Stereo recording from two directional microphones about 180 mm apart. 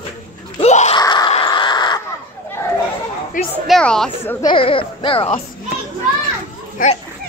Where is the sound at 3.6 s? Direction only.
Centre (ahead or behind).